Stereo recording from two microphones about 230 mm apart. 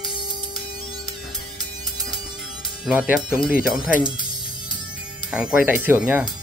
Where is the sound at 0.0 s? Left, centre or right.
Left.